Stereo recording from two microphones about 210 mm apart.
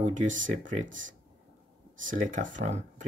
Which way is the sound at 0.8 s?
65° right (ahead or behind).